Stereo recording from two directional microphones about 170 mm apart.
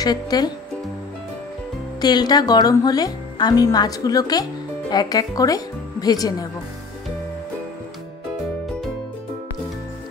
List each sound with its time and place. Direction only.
0.0 s speech: 25° left (ahead or behind)
2.0 s speech: 25° left (ahead or behind)